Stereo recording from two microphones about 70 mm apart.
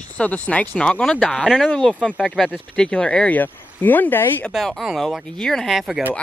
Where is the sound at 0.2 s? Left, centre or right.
Left.